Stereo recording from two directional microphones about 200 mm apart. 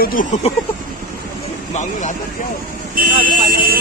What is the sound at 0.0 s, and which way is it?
Speech, 45° left (ahead or behind).